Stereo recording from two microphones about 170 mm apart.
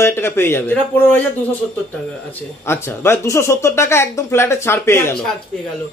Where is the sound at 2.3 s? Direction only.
15° left (ahead or behind).